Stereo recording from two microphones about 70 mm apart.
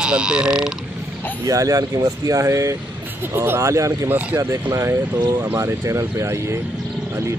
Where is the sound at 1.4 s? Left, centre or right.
Right.